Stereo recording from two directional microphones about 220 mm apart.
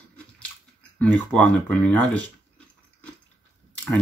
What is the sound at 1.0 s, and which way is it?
Speech, 5° left (ahead or behind).